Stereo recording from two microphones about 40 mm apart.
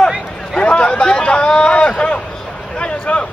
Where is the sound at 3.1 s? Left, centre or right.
Left.